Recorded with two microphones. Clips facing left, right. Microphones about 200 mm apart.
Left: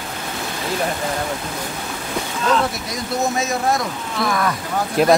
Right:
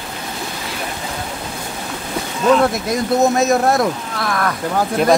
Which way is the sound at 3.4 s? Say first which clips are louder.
Right 6 dB; 65° right (ahead or behind).